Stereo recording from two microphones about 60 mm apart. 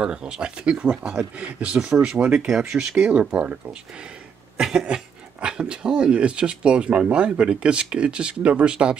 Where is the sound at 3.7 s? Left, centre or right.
Centre.